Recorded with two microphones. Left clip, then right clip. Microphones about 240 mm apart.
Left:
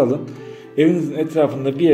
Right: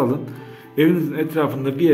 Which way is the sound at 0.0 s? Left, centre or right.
Centre.